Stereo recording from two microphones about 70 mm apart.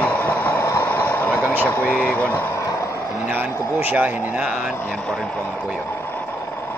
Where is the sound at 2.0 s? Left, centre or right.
Left.